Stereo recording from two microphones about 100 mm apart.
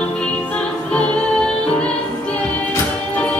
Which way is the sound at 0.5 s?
10° left (ahead or behind).